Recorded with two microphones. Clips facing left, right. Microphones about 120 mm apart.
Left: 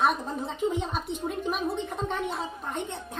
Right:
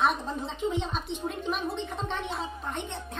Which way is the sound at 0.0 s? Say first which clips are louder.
Left 1 dB; 5° left (ahead or behind).